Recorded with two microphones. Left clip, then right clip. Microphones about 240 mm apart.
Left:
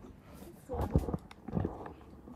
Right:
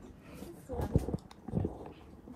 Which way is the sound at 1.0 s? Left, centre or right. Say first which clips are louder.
Left 1 dB; right.